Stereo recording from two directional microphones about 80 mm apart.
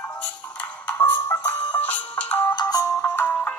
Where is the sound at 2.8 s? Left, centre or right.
Left.